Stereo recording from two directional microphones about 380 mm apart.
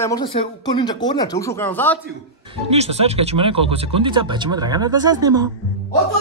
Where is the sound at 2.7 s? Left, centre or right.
Centre.